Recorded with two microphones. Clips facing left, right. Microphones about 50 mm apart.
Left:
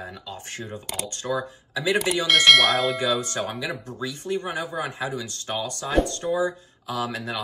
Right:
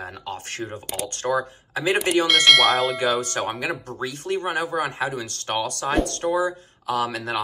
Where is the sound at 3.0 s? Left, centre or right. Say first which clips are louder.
Right 2 dB; right.